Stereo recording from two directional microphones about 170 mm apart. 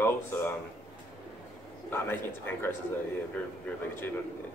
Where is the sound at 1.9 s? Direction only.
15° left (ahead or behind).